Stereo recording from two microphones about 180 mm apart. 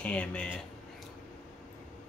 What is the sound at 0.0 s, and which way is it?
Speech, 5° left (ahead or behind).